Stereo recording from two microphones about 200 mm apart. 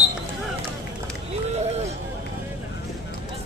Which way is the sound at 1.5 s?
35° right (ahead or behind).